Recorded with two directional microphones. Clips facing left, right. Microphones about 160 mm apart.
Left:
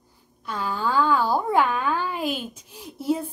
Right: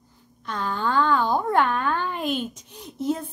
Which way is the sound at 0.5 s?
5° left (ahead or behind).